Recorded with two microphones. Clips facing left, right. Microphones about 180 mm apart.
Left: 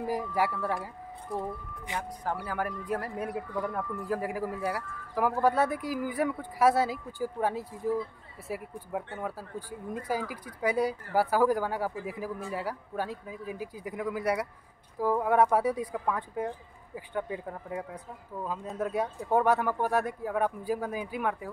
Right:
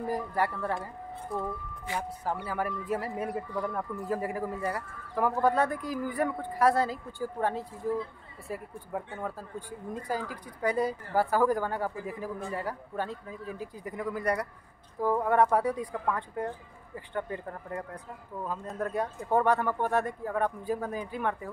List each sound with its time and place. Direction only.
0.0 s speech: 10° left (ahead or behind)
2.0 s speech: 5° right (ahead or behind)
10.0 s speech: 10° left (ahead or behind)